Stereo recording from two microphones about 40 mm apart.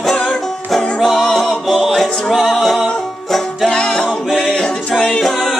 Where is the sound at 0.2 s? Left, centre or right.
Centre.